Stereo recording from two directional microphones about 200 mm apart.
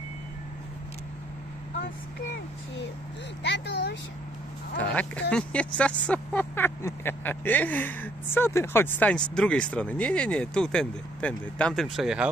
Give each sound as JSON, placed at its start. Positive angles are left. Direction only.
{"t": 3.4, "sound": "speech", "side_deg": 60}
{"t": 4.7, "sound": "speech", "side_deg": 5}